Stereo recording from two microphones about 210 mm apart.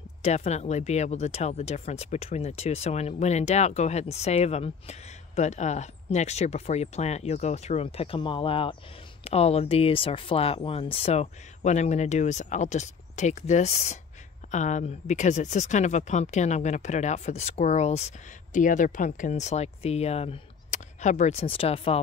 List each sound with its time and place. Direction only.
0.2 s speech: 30° left (ahead or behind)